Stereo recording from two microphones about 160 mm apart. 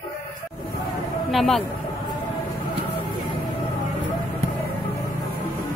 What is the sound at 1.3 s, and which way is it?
Speech, centre (ahead or behind).